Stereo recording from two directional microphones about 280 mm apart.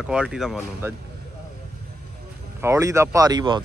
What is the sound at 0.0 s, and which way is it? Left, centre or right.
Speech, centre.